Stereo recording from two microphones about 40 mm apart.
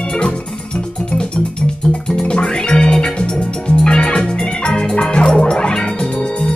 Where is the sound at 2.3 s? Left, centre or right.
Centre.